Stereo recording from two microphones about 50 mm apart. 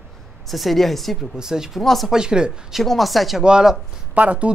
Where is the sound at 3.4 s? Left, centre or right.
Centre.